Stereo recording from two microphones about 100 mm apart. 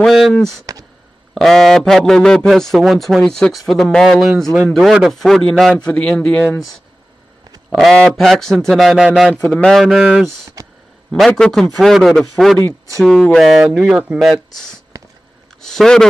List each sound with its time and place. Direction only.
0.0 s a man's voice: centre (ahead or behind)
7.7 s a man's voice: 5° left (ahead or behind)
10.6 s a sound: 35° right (ahead or behind)
11.1 s a man's voice: 5° left (ahead or behind)
15.6 s a man's voice: 5° left (ahead or behind)